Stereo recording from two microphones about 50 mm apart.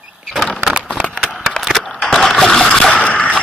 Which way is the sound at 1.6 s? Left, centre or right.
Centre.